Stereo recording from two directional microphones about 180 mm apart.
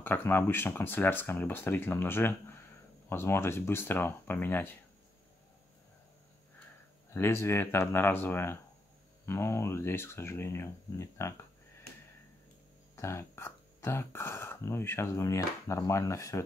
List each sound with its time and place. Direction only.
0.0 s speech: 10° left (ahead or behind)
7.2 s speech: 15° left (ahead or behind)
12.9 s speech: 15° left (ahead or behind)